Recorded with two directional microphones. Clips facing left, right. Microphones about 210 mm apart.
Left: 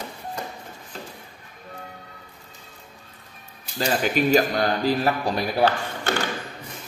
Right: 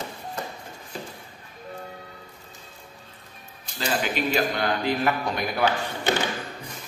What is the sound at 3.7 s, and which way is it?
A man's voice, 45° left (ahead or behind).